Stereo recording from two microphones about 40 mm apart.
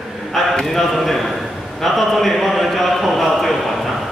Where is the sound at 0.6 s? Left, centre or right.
Centre.